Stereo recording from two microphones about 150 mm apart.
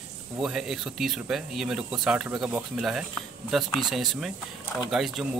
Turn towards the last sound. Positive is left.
turn(degrees=0)  # may be behind; listen again after turning